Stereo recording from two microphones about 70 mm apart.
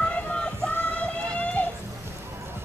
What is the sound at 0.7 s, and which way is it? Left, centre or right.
Music, left.